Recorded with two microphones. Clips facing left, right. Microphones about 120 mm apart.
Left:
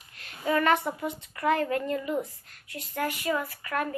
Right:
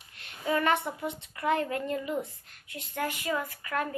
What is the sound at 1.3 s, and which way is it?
Speech, 25° right (ahead or behind).